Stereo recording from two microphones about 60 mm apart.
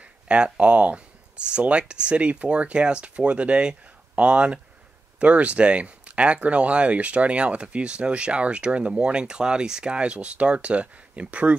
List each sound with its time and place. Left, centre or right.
0.0 s speech: right